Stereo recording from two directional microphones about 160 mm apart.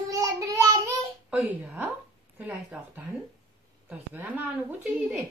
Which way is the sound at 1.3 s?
5° right (ahead or behind).